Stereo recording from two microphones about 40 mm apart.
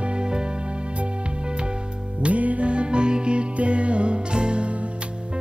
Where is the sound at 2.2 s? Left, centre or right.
Right.